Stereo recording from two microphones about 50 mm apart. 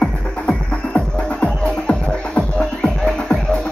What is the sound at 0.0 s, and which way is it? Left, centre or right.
Music, centre.